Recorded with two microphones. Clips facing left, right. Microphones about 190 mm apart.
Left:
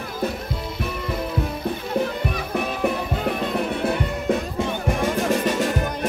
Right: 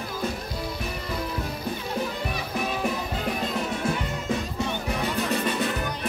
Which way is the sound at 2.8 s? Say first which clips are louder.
Left 5 dB; 60° left (ahead or behind).